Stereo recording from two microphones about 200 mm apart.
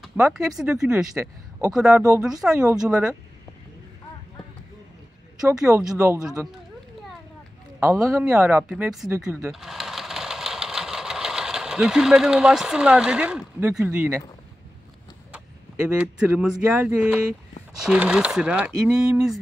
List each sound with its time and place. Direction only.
0.0 s speech: centre (ahead or behind)
5.4 s speech: 5° right (ahead or behind)
5.9 s speech: 15° right (ahead or behind)
6.2 s speech: centre (ahead or behind)
7.8 s speech: 10° right (ahead or behind)
15.3 s speech: 5° right (ahead or behind)